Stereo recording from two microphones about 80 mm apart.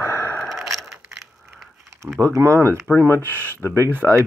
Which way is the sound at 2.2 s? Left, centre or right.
Right.